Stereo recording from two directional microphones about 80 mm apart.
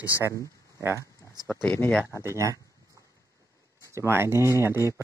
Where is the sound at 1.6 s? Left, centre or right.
Left.